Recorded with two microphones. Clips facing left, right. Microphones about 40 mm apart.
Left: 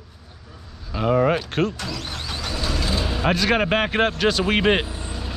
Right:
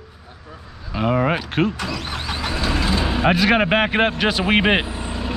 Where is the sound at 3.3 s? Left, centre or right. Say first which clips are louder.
Right 3 dB; centre.